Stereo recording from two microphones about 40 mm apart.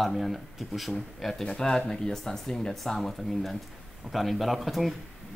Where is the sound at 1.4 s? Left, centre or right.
Centre.